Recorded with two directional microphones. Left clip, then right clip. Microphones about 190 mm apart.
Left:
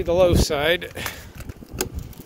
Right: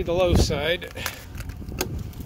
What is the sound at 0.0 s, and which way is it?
Speech, 40° left (ahead or behind).